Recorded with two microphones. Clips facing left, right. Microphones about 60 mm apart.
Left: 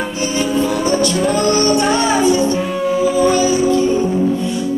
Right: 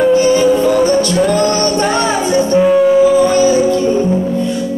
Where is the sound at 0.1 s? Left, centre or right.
Right.